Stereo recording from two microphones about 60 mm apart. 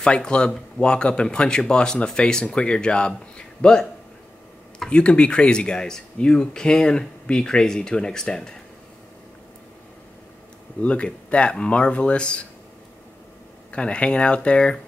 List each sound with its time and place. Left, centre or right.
0.0 s speech: centre
10.8 s speech: left
13.7 s speech: centre